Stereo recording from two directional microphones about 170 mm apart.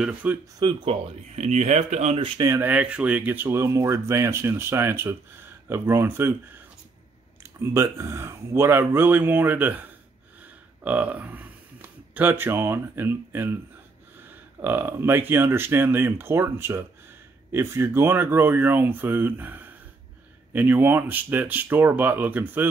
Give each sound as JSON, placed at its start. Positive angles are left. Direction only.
{"t": 0.0, "sound": "speech", "side_deg": -10}
{"t": 0.6, "sound": "speech", "side_deg": -30}
{"t": 2.1, "sound": "speech", "side_deg": -30}
{"t": 2.5, "sound": "speech", "side_deg": -10}
{"t": 7.7, "sound": "speech", "side_deg": -15}